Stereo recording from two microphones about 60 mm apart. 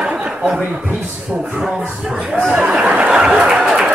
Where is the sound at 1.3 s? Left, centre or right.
Centre.